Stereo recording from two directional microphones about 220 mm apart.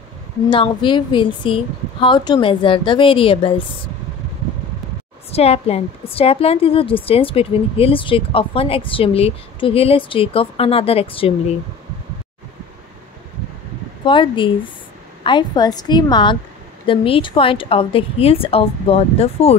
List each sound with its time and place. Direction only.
0.5 s a woman's voice: 20° left (ahead or behind)
5.3 s a woman's voice: 30° left (ahead or behind)
14.0 s a woman's voice: 20° left (ahead or behind)